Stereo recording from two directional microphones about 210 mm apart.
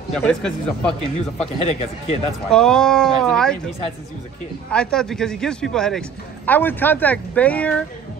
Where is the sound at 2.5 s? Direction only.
5° left (ahead or behind).